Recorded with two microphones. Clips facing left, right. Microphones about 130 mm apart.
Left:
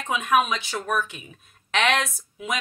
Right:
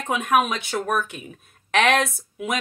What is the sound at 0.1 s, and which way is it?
A woman's voice, 50° right (ahead or behind).